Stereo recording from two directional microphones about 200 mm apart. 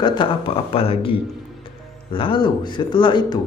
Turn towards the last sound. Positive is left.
turn(degrees=20)  # may be behind; listen again after turning